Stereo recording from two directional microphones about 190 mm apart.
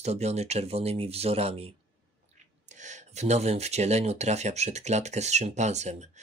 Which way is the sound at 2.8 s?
40° right (ahead or behind).